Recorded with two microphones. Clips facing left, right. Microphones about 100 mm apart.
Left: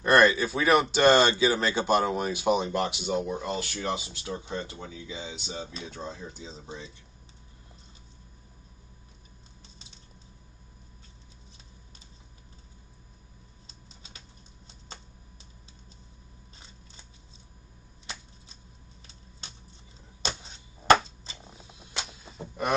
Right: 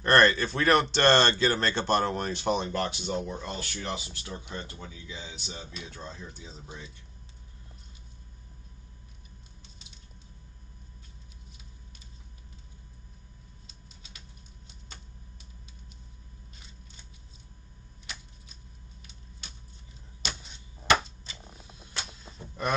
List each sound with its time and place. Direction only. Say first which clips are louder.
0.0 s speech: left 1 dB; 10° left (ahead or behind)
5.6 s speech: left 4 dB; 30° left (ahead or behind)
5.9 s speech: left 4 dB; 20° left (ahead or behind)
13.7 s typing: left 1 dB; 35° left (ahead or behind)
20.2 s a sound: left 4 dB; 35° left (ahead or behind)
21.5 s a sound: even; 10° left (ahead or behind)